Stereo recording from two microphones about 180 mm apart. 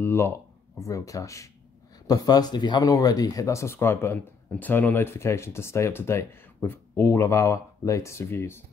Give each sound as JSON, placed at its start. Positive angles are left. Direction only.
{"t": 0.0, "sound": "speech", "side_deg": 15}